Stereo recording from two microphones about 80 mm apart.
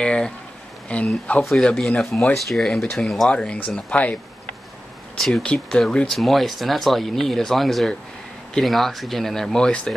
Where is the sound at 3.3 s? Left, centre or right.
Centre.